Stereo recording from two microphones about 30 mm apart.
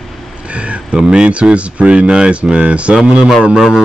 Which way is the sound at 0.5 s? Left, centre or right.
Right.